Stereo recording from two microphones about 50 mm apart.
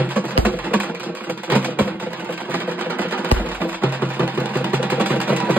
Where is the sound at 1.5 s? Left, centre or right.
Right.